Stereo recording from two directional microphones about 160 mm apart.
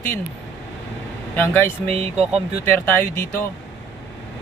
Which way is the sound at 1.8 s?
40° right (ahead or behind).